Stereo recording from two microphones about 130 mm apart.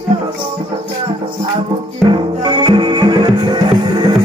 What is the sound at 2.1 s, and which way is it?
Music, 40° right (ahead or behind).